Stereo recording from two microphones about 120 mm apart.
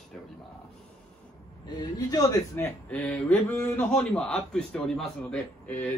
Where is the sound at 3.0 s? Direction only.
5° left (ahead or behind).